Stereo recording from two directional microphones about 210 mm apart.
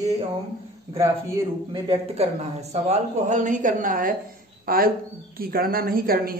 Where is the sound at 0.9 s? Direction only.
15° right (ahead or behind); by 6.3 s 45° right (ahead or behind).